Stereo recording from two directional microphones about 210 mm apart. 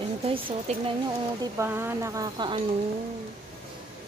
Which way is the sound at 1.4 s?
10° right (ahead or behind).